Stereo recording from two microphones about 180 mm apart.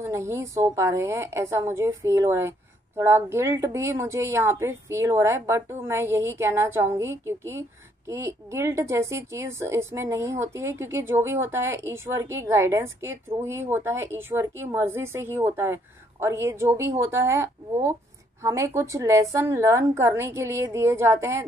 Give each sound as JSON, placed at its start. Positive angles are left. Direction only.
{"t": 0.0, "sound": "a woman's voice", "side_deg": -15}